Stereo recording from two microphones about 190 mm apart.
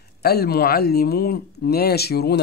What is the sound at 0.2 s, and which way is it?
Speech, 55° left (ahead or behind).